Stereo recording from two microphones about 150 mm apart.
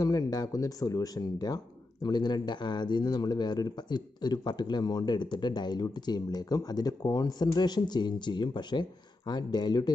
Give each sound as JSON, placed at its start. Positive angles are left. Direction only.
{"t": 0.0, "sound": "speech", "side_deg": 25}